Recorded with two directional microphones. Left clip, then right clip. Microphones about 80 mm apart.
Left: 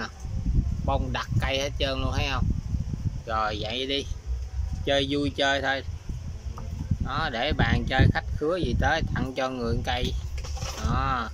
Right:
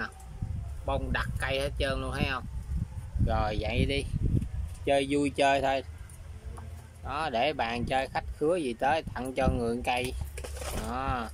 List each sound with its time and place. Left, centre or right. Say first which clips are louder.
0.8 s speech: left 2 dB; centre; by 5.9 s right
7.1 s speech: left 1 dB; centre